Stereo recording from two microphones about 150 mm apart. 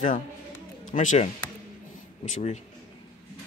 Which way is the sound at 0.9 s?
50° left (ahead or behind).